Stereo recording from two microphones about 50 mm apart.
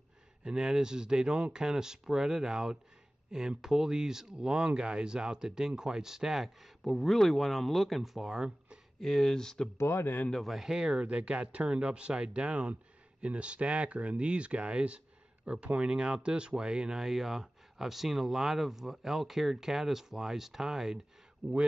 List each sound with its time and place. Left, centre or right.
0.4 s speech: centre
9.0 s speech: centre
9.8 s speech: left
10.4 s speech: centre